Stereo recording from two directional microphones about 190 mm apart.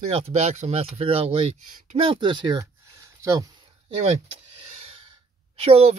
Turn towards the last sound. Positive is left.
turn(degrees=-30)  # may be behind; listen again after turning